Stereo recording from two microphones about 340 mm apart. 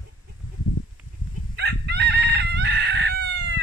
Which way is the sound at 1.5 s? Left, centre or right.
Right.